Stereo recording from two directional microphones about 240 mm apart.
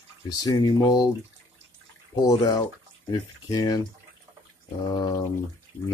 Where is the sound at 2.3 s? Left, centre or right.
Centre.